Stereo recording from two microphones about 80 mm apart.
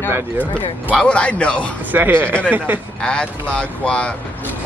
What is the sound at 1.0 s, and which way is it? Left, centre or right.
Speech, centre.